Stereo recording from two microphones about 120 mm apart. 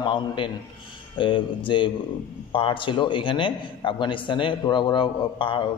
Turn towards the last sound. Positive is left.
turn(degrees=45)  # may be behind; listen again after turning